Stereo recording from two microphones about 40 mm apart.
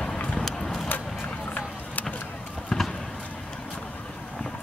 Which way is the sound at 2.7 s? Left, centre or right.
Centre.